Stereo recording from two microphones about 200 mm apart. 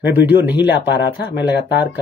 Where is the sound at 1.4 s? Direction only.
60° left (ahead or behind).